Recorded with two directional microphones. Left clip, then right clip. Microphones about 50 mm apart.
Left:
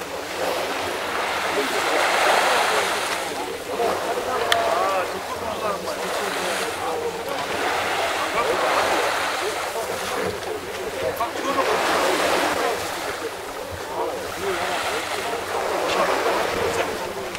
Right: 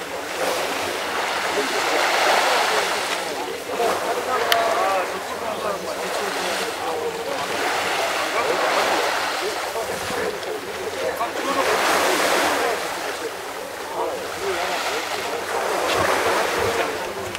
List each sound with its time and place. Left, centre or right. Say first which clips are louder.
1.3 s stream: even; centre
3.8 s vehicle: right 1 dB; right
7.5 s boat: even; centre
8.5 s a sound: even; centre
11.4 s waves: right 1 dB; right
14.5 s a sound: even; centre
15.6 s ocean: right 1 dB; right